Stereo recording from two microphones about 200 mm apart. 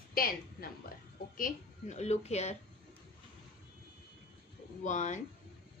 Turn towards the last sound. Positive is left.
turn(degrees=35)  # may be behind; listen again after turning